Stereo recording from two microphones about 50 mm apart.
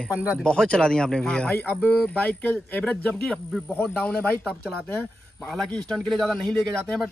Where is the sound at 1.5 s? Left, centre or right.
Left.